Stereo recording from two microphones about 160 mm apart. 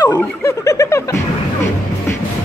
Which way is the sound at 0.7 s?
20° left (ahead or behind).